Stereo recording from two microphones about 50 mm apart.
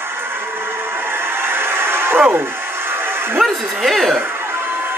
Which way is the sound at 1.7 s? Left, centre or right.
Right.